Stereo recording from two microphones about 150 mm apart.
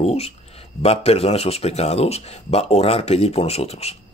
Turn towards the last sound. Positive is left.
turn(degrees=45)  # may be behind; listen again after turning